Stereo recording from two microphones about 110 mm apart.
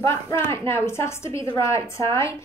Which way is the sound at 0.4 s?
25° left (ahead or behind).